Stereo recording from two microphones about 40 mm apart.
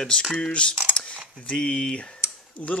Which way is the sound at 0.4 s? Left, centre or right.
Left.